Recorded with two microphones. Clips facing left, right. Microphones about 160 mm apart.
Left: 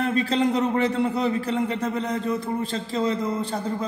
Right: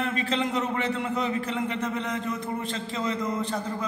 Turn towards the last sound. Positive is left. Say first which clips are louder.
# left 3 dB
turn(degrees=30)  # may be behind; listen again after turning